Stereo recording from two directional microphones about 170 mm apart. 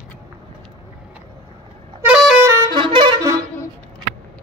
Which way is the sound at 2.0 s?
5° right (ahead or behind).